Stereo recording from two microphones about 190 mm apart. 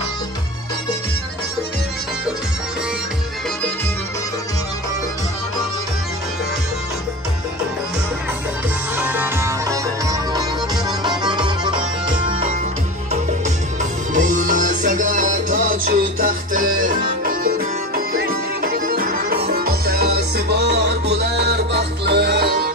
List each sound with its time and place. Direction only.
8.9 s music: 10° right (ahead or behind); by 12.4 s 25° right (ahead or behind)
14.1 s music: 45° right (ahead or behind)